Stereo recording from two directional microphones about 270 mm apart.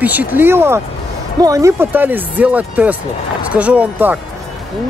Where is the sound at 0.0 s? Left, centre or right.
Centre.